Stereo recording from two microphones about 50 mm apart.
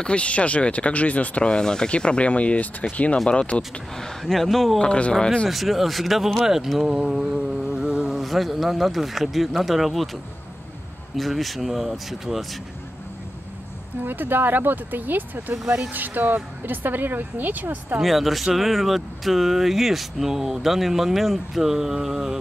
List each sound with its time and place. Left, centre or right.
0.0 s speech: left
3.9 s speech: centre
4.7 s speech: left
5.5 s speech: centre
7.0 s mantra: centre
8.2 s speech: centre
11.1 s speech: centre
14.0 s speech: right
15.5 s speech: centre
15.9 s speech: right
18.0 s speech: centre